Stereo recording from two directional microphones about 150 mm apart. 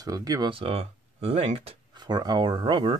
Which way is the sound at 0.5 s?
40° right (ahead or behind).